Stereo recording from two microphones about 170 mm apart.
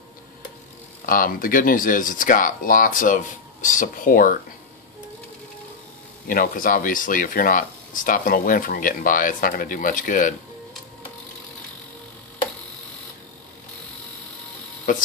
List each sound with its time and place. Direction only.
1.0 s speech: 55° left (ahead or behind)
6.2 s speech: 55° left (ahead or behind)